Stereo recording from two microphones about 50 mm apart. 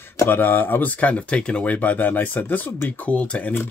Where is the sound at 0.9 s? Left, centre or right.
Left.